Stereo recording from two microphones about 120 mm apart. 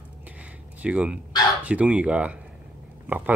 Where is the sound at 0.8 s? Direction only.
10° right (ahead or behind).